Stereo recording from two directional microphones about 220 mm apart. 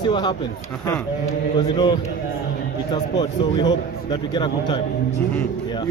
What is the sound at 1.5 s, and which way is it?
A man's voice, 20° left (ahead or behind).